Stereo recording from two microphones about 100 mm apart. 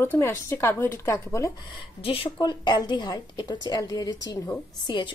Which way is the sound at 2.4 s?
50° left (ahead or behind).